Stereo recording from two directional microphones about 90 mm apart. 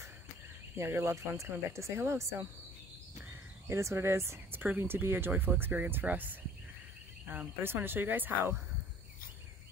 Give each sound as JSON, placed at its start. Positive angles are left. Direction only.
{"t": 0.7, "sound": "speech", "side_deg": -30}
{"t": 3.3, "sound": "speech", "side_deg": -30}